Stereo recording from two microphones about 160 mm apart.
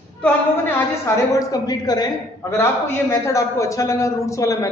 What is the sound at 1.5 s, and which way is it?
A man's voice, 25° left (ahead or behind).